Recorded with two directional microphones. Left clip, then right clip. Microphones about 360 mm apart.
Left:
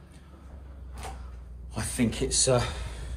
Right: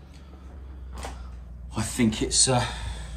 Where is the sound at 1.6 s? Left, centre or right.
Centre.